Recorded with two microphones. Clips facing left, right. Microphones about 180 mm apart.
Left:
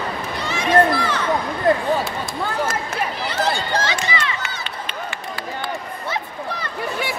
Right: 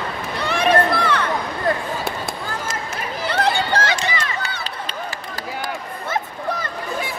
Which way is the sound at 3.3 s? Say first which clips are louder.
Right 3 dB; 60° right (ahead or behind).